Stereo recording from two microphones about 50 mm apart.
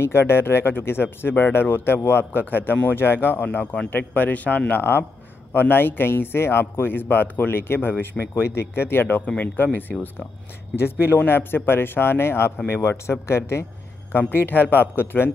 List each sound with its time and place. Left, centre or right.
0.0 s speech: left
3.7 s a man's voice: left
9.0 s a man's voice: left
11.2 s speech: left
14.1 s speech: left